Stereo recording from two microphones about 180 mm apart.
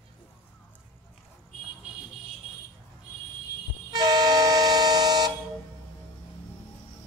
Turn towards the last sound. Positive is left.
turn(degrees=-20)  # may be behind; listen again after turning